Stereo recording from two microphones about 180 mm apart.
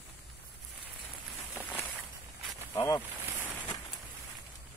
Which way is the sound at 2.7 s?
20° left (ahead or behind).